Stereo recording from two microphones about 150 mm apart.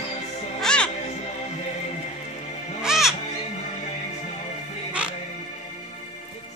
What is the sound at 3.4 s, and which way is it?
Music, 45° left (ahead or behind).